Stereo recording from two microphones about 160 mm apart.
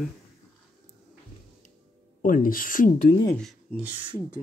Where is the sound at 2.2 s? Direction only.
60° left (ahead or behind).